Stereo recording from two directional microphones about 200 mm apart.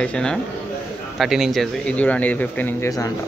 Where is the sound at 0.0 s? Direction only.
5° left (ahead or behind).